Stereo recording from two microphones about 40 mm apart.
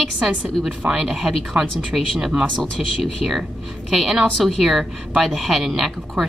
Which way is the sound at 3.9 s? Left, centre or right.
Centre.